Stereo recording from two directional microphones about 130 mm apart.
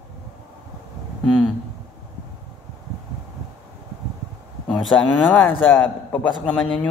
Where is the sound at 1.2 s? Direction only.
Centre (ahead or behind).